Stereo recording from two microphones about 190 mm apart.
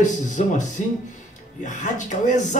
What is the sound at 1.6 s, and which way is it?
Speech, 40° left (ahead or behind).